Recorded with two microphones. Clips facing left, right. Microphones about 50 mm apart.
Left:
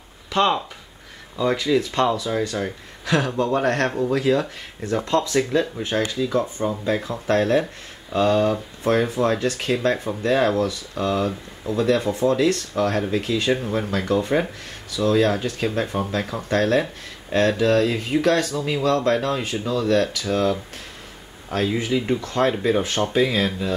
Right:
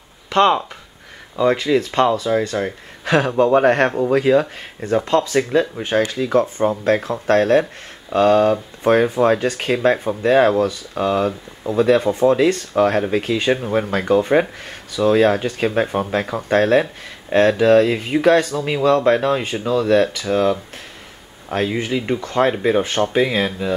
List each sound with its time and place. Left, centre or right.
0.3 s speech: centre
5.0 s speech: right
5.8 s speech: right
6.8 s speech: right
7.2 s speech: right; by 23.7 s centre